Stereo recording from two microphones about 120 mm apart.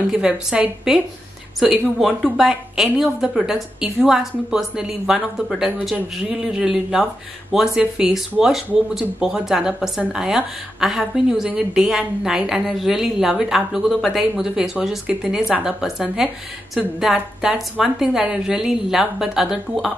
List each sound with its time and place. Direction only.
0.1 s a woman's voice: 5° right (ahead or behind)